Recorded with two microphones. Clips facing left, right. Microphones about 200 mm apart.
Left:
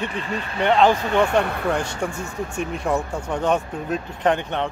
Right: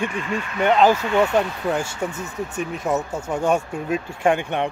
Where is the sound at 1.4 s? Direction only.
60° left (ahead or behind).